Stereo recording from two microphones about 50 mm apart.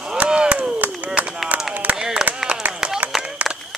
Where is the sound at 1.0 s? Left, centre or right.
Right.